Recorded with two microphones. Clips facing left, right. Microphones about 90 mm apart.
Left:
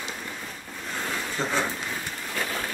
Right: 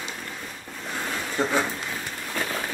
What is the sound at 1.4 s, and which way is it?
Speech, 15° right (ahead or behind).